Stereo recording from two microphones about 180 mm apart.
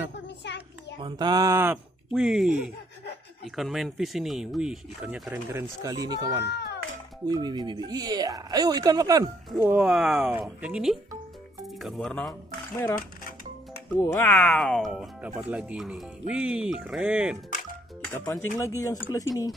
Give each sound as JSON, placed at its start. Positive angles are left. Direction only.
{"t": 0.4, "sound": "a child's voice", "side_deg": 75}
{"t": 1.0, "sound": "speech", "side_deg": -25}
{"t": 2.1, "sound": "speech", "side_deg": 0}
{"t": 3.5, "sound": "speech", "side_deg": 0}
{"t": 5.3, "sound": "speech", "side_deg": -15}
{"t": 6.4, "sound": "speech", "side_deg": 70}
{"t": 7.2, "sound": "speech", "side_deg": -20}
{"t": 9.8, "sound": "speech", "side_deg": 0}
{"t": 13.9, "sound": "speech", "side_deg": 15}
{"t": 18.1, "sound": "speech", "side_deg": 15}